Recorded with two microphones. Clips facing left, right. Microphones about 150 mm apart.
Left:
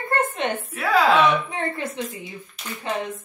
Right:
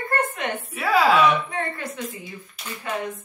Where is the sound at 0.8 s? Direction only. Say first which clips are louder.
Even; 5° right (ahead or behind).